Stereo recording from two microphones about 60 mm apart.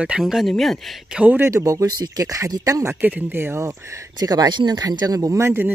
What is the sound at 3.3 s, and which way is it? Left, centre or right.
Speech, right.